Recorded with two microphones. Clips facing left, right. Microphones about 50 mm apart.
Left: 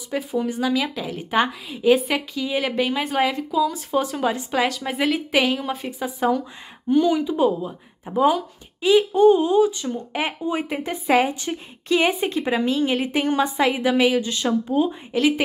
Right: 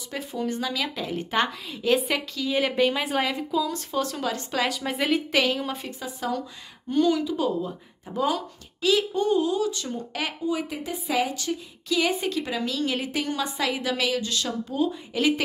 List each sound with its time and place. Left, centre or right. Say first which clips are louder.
0.1 s a woman's voice: left 5 dB; centre
2.5 s a woman's voice: even; centre
5.6 s speech: left 3 dB; centre
5.9 s a woman's voice: left 10 dB; left
10.1 s a woman's voice: left 3 dB; left